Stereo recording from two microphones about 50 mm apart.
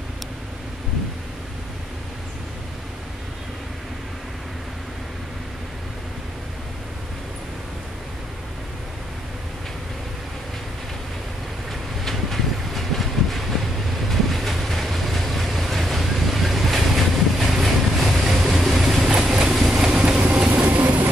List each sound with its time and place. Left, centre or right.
12.0 s train: centre
14.0 s vehicle: centre
19.1 s train: centre
20.6 s train: right